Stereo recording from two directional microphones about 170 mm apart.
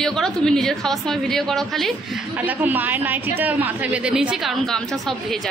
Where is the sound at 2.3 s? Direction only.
10° right (ahead or behind).